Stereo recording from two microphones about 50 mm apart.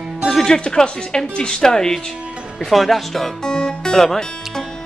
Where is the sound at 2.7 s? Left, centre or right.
Centre.